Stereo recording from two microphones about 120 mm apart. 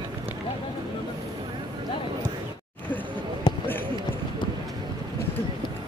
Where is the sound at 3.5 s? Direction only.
40° left (ahead or behind).